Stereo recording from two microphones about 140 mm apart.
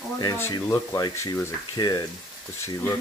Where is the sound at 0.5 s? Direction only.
25° left (ahead or behind).